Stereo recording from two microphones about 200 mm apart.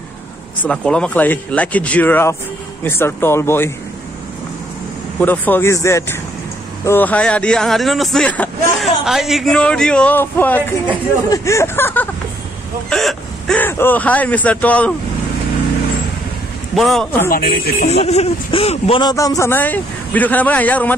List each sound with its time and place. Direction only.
0.6 s speech: 5° left (ahead or behind)
5.2 s speech: 10° left (ahead or behind)
16.7 s speech: centre (ahead or behind)
17.3 s speech: 50° left (ahead or behind)
17.8 s speech: 30° left (ahead or behind); by 20.9 s 10° left (ahead or behind)